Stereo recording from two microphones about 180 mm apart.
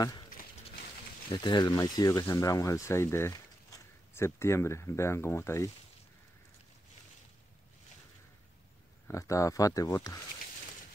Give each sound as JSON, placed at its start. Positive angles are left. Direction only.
{"t": 1.3, "sound": "speech", "side_deg": 25}
{"t": 9.0, "sound": "speech", "side_deg": 15}